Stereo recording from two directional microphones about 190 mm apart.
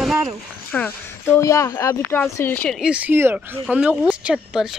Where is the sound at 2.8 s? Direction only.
10° right (ahead or behind).